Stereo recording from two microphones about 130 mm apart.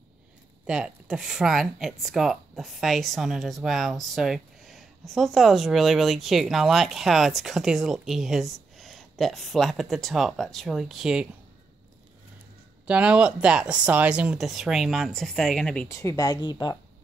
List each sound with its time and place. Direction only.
0.7 s speech: 5° right (ahead or behind)
12.8 s speech: 10° right (ahead or behind)
15.9 s speech: 25° left (ahead or behind)